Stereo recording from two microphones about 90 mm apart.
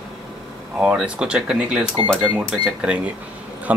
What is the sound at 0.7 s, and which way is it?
Speech, 10° right (ahead or behind).